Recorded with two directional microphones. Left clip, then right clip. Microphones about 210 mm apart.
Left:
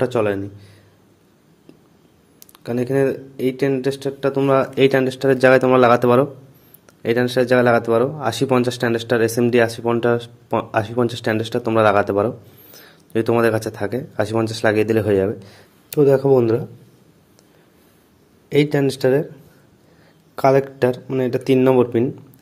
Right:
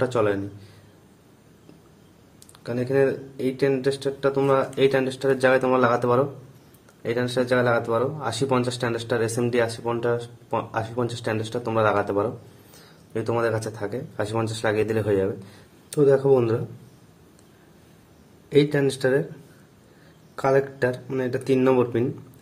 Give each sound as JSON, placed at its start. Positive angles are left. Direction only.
{"t": 0.0, "sound": "speech", "side_deg": 30}
{"t": 2.6, "sound": "speech", "side_deg": 30}
{"t": 18.5, "sound": "speech", "side_deg": 30}
{"t": 20.3, "sound": "speech", "side_deg": 30}